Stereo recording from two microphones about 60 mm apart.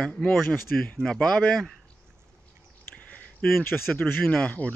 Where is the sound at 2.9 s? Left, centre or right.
Left.